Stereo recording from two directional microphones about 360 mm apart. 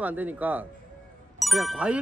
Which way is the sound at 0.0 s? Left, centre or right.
Centre.